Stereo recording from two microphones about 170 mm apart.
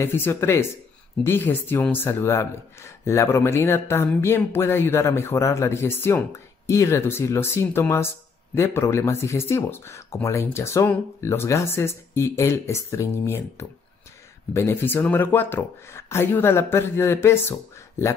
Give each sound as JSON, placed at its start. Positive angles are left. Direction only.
{"t": 0.0, "sound": "speech", "side_deg": 15}